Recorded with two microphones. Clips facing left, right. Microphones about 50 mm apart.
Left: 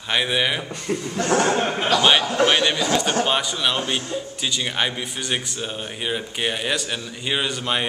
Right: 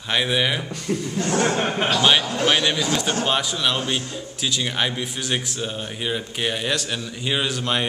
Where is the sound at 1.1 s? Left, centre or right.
Left.